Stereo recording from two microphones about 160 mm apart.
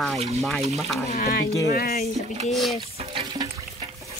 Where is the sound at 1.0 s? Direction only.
70° left (ahead or behind).